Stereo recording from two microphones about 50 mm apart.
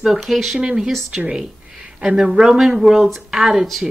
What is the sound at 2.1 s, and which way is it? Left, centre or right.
A woman's voice, centre.